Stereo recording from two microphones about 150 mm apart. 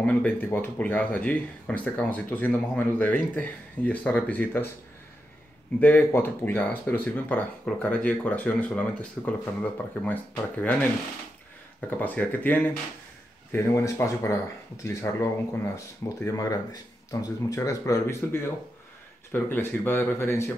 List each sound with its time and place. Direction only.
0.0 s speech: 10° left (ahead or behind)
5.8 s speech: 10° left (ahead or behind)
11.9 s speech: 10° left (ahead or behind)